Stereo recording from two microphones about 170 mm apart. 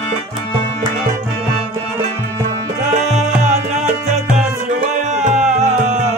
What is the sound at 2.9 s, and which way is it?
Music, 45° right (ahead or behind).